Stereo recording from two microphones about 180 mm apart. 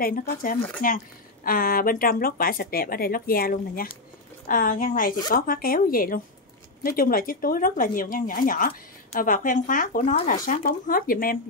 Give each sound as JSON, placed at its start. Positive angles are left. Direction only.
{"t": 0.0, "sound": "speech", "side_deg": 55}
{"t": 0.6, "sound": "speech", "side_deg": 5}
{"t": 0.8, "sound": "speech", "side_deg": 50}